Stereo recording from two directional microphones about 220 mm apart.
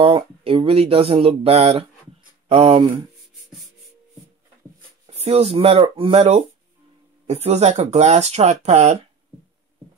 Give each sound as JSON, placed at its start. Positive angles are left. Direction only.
{"t": 0.0, "sound": "speech", "side_deg": -25}
{"t": 5.0, "sound": "speech", "side_deg": -30}